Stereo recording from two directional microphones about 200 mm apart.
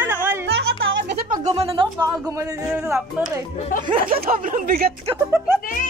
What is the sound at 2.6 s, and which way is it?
Speech, 5° right (ahead or behind).